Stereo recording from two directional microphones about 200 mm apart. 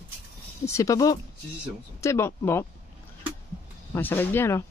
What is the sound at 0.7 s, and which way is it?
Speech, 15° left (ahead or behind).